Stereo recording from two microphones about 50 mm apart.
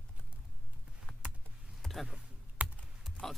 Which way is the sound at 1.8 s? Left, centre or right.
Centre.